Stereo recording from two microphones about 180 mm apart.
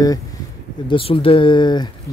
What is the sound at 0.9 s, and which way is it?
Speech, 30° left (ahead or behind).